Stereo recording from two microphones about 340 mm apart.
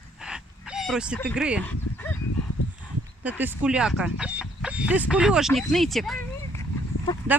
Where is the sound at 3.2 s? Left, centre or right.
Centre.